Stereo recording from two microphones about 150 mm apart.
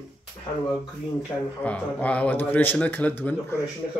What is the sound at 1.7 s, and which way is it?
Speech, 10° left (ahead or behind).